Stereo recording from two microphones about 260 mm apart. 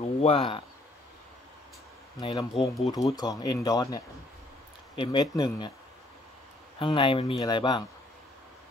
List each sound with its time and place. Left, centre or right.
0.2 s speech: left
2.1 s speech: centre
6.8 s speech: centre